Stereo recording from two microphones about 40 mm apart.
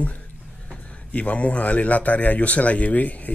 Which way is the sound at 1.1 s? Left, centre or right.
Left.